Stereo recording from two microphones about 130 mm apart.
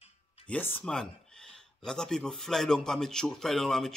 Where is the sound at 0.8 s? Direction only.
5° left (ahead or behind).